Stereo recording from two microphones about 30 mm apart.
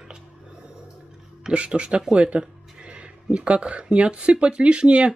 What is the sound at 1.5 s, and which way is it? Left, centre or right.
Speech, right.